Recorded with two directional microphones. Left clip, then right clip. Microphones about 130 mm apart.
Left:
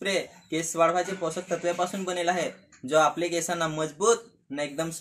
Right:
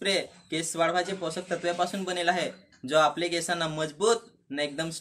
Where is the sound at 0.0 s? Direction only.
15° left (ahead or behind).